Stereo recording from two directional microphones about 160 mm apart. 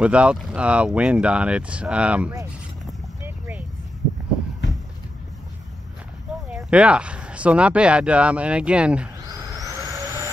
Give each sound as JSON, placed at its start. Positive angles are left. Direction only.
{"t": 0.0, "sound": "speech", "side_deg": -5}
{"t": 3.3, "sound": "a sound", "side_deg": -10}
{"t": 6.5, "sound": "speech", "side_deg": -5}
{"t": 9.5, "sound": "vehicle", "side_deg": -20}